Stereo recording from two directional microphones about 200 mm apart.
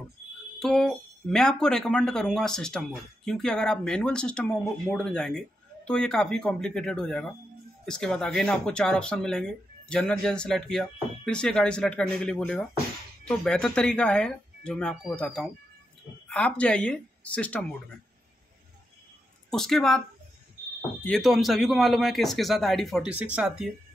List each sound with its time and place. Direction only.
0.6 s speech: centre (ahead or behind)
19.5 s speech: centre (ahead or behind)
21.0 s speech: centre (ahead or behind)